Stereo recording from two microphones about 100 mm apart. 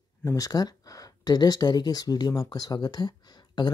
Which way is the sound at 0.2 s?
35° left (ahead or behind).